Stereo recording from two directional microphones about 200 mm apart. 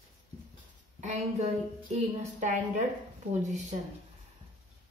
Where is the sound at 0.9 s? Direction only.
35° right (ahead or behind).